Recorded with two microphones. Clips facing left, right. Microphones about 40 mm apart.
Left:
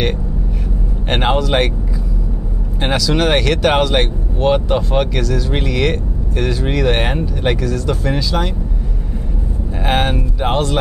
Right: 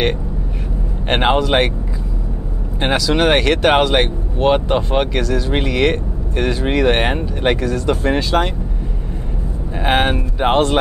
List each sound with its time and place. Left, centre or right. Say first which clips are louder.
1.0 s speech: right 1 dB; centre
2.8 s speech: right 1 dB; centre; by 8.5 s right
9.8 s speech: right 1 dB; centre